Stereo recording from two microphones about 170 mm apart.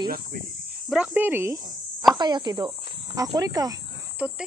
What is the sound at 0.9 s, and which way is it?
Speech, 10° right (ahead or behind).